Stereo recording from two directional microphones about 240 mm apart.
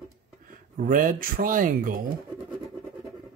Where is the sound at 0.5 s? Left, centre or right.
Right.